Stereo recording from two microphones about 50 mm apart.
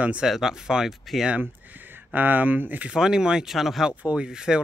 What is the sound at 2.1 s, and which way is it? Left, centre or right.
Speech, right.